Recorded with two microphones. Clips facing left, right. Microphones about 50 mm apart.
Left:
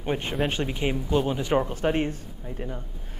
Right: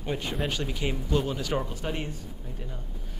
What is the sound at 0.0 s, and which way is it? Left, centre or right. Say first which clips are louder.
Speech: left 4 dB; left.